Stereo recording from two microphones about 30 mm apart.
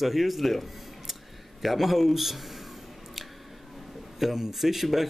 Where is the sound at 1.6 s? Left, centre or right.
Centre.